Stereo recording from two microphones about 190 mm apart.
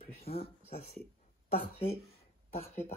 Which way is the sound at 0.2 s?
30° left (ahead or behind).